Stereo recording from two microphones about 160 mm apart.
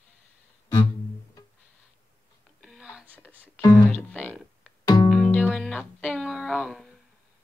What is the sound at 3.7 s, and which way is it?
Speech, 10° left (ahead or behind).